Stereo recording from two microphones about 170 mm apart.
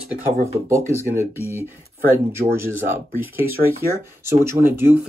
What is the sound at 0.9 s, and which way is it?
Speech, 15° left (ahead or behind).